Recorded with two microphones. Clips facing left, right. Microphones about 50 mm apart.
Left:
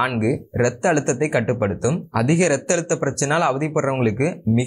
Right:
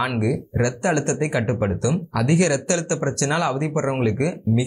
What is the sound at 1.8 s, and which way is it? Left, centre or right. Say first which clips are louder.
Speech: left 2 dB; left.